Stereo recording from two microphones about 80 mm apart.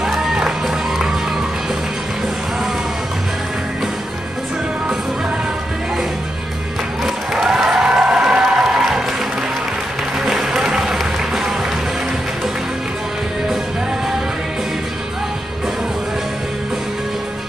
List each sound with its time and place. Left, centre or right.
0.0 s music: centre
7.3 s applause: centre
10.2 s music: centre